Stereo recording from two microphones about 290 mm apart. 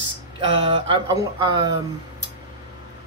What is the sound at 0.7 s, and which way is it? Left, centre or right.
Speech, centre.